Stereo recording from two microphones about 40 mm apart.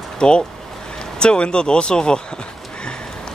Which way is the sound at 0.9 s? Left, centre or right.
Left.